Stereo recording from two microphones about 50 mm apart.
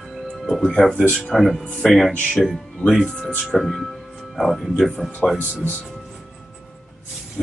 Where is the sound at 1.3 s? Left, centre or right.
Centre.